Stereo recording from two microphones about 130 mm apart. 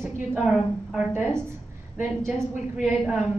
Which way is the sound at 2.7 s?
5° right (ahead or behind).